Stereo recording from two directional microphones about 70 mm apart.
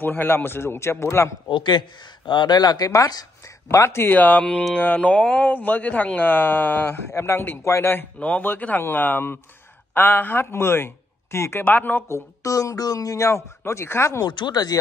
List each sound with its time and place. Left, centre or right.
0.0 s a man's voice: left
1.6 s speech: left
3.4 s speech: left
4.2 s a man's voice: left
8.2 s a man's voice: left
11.6 s speech: left
12.1 s speech: left
14.2 s speech: left